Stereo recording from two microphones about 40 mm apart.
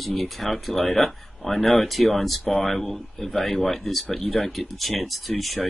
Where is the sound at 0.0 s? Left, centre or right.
Centre.